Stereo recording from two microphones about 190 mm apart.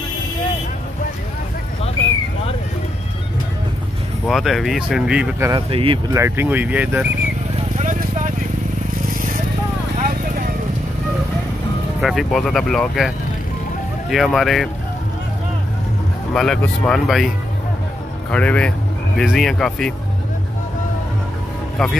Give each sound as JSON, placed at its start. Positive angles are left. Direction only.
{"t": 4.3, "sound": "speech", "side_deg": 0}
{"t": 5.7, "sound": "speech", "side_deg": -30}
{"t": 6.1, "sound": "speech", "side_deg": -15}
{"t": 9.9, "sound": "clip-clop", "side_deg": -45}
{"t": 12.0, "sound": "speech", "side_deg": 0}
{"t": 14.1, "sound": "speech", "side_deg": 0}
{"t": 16.3, "sound": "speech", "side_deg": 0}
{"t": 18.3, "sound": "speech", "side_deg": 5}